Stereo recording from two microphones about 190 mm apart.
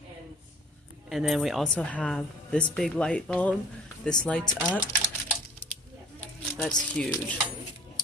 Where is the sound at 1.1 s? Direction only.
Centre (ahead or behind).